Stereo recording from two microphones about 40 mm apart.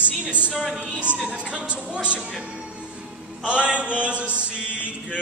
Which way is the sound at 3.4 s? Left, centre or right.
Right.